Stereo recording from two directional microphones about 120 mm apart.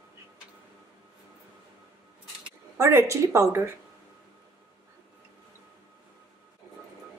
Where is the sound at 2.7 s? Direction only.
25° right (ahead or behind).